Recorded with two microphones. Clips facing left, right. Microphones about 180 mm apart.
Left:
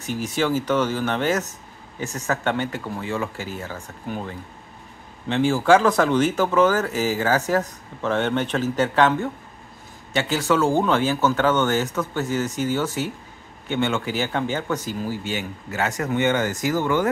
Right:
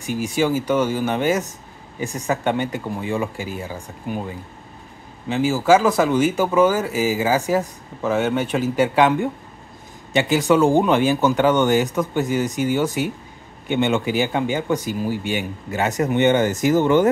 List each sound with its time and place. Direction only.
0.0 s speech: 10° right (ahead or behind)